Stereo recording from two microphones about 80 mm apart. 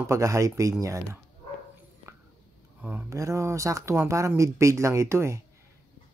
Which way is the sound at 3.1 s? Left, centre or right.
Right.